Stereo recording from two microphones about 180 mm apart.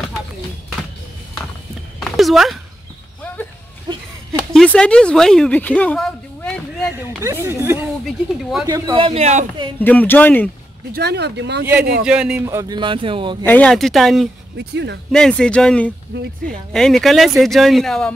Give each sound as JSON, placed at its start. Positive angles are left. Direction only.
{"t": 2.0, "sound": "a sound", "side_deg": 0}
{"t": 4.6, "sound": "a woman's voice", "side_deg": 5}
{"t": 7.2, "sound": "speech", "side_deg": -15}
{"t": 8.0, "sound": "speech", "side_deg": 0}
{"t": 8.6, "sound": "speech", "side_deg": -20}
{"t": 9.8, "sound": "speech", "side_deg": 10}
{"t": 10.9, "sound": "speech", "side_deg": -65}
{"t": 12.0, "sound": "speech", "side_deg": -5}
{"t": 12.4, "sound": "speech", "side_deg": -20}
{"t": 13.4, "sound": "speech", "side_deg": 10}
{"t": 14.6, "sound": "speech", "side_deg": -70}
{"t": 15.1, "sound": "speech", "side_deg": 5}
{"t": 16.1, "sound": "speech", "side_deg": -75}
{"t": 16.7, "sound": "speech", "side_deg": 0}